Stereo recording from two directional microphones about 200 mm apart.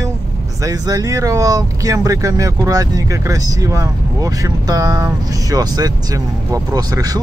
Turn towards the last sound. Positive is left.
turn(degrees=-20)  # may be behind; listen again after turning